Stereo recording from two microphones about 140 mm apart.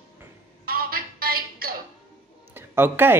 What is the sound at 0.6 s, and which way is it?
Music, 90° right.